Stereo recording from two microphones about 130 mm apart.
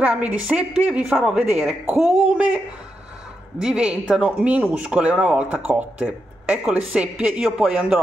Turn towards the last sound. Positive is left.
turn(degrees=-5)  # may be behind; listen again after turning